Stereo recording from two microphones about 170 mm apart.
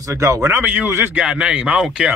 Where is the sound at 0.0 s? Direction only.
20° right (ahead or behind).